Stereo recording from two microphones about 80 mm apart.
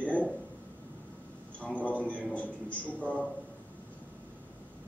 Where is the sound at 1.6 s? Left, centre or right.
Centre.